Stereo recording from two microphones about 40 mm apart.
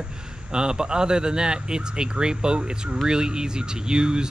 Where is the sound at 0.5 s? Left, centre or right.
Centre.